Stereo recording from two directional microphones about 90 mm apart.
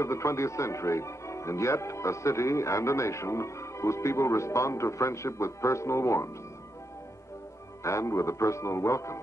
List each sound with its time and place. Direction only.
0.0 s speech: 35° left (ahead or behind)
7.8 s speech: 35° left (ahead or behind)